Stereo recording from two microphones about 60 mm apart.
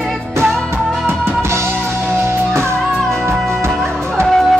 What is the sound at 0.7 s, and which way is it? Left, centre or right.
Music, right.